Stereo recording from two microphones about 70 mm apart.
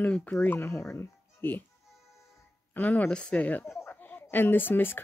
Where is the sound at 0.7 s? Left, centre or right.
Left.